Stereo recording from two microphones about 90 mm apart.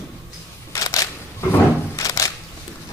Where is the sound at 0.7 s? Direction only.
40° left (ahead or behind).